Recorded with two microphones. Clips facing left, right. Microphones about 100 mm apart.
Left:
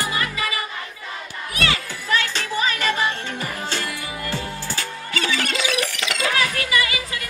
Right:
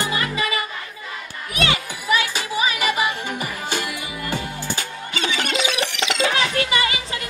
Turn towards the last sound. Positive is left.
turn(degrees=-25)  # may be behind; listen again after turning